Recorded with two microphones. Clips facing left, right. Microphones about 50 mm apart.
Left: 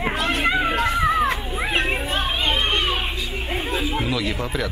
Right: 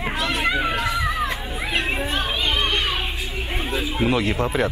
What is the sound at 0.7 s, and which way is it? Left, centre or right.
Children playing, left.